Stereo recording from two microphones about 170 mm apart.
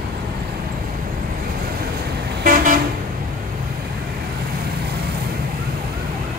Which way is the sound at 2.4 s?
50° right (ahead or behind).